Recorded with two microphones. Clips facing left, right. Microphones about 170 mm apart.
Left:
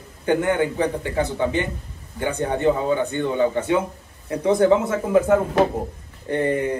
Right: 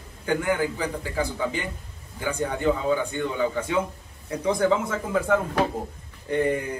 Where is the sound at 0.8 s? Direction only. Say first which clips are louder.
Left 6 dB; 65° left (ahead or behind).